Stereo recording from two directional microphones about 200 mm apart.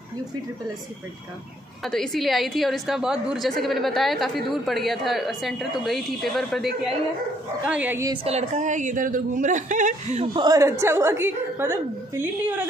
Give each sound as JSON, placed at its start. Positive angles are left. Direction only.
{"t": 1.9, "sound": "a woman's voice", "side_deg": 0}
{"t": 7.7, "sound": "a woman's voice", "side_deg": -10}
{"t": 8.1, "sound": "a woman's voice", "side_deg": -30}
{"t": 10.2, "sound": "a woman's voice", "side_deg": -25}